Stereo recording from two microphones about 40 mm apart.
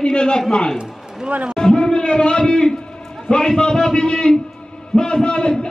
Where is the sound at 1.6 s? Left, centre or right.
Left.